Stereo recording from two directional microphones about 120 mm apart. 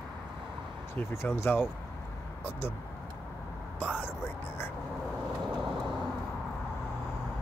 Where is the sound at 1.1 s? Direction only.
20° left (ahead or behind).